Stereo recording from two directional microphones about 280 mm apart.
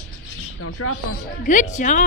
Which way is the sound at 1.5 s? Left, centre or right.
Left.